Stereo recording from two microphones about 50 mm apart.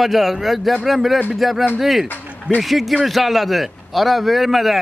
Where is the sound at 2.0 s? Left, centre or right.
Left.